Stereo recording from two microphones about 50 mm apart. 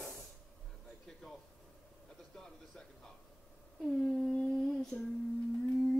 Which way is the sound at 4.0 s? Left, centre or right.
Centre.